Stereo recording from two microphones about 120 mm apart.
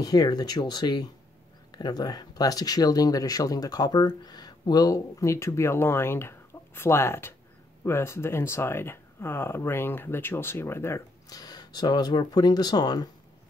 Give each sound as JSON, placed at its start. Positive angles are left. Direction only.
{"t": 0.0, "sound": "speech", "side_deg": 30}
{"t": 11.2, "sound": "speech", "side_deg": 30}